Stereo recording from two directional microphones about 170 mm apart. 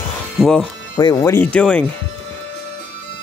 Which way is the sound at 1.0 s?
20° left (ahead or behind).